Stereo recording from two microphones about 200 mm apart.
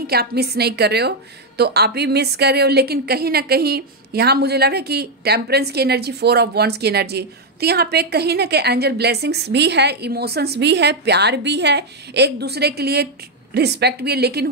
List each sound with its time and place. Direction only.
0.0 s a woman's voice: 50° right (ahead or behind)